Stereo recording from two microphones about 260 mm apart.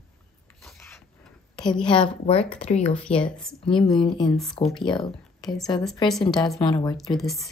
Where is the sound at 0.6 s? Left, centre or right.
Centre.